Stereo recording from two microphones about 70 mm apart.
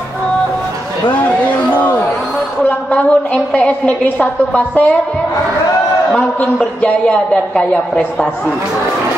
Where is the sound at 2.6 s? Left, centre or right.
Centre.